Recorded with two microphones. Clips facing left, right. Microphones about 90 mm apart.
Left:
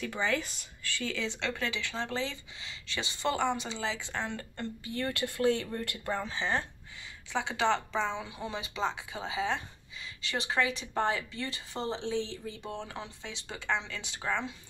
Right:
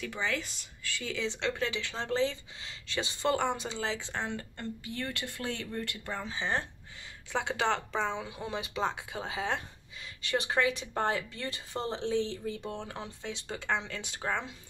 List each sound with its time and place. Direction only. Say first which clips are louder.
0.0 s speech: left 3 dB; centre (ahead or behind)
1.1 s speech: right 5 dB; 25° right (ahead or behind); by 4.0 s 40° right (ahead or behind)
4.0 s speech: even; 20° right (ahead or behind)
5.0 s speech: left 9 dB; 10° left (ahead or behind)
6.2 s speech: left 1 dB; 15° right (ahead or behind)
7.3 s speech: left 1 dB; 50° right (ahead or behind)